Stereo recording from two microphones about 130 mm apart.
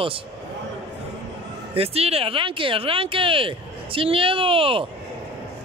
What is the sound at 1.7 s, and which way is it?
Speech, 50° right (ahead or behind).